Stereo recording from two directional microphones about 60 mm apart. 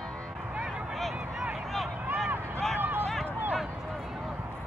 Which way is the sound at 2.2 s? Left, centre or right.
Right.